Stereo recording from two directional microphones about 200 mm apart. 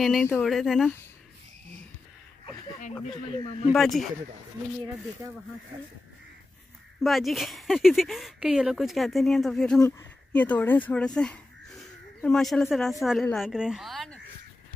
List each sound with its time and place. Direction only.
0.0 s speech: centre (ahead or behind)
3.3 s speech: 30° left (ahead or behind)
3.7 s speech: centre (ahead or behind)
7.0 s speech: centre (ahead or behind)
9.8 s speech: 15° left (ahead or behind)